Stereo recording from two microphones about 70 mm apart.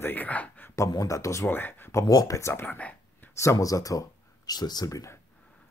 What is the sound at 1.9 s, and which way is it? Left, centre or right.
Speech, left.